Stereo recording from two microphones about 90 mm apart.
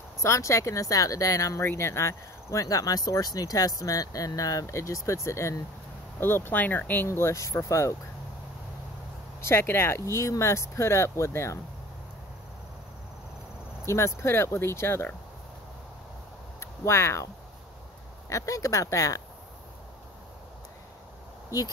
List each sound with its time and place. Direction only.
0.2 s speech: 35° left (ahead or behind)
7.1 s speech: 30° left (ahead or behind)
9.4 s speech: 25° left (ahead or behind)
13.8 s speech: 30° left (ahead or behind)
16.5 s speech: 30° left (ahead or behind)
18.3 s speech: 40° left (ahead or behind)